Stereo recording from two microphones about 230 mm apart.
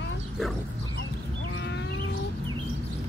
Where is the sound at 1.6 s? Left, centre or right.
Left.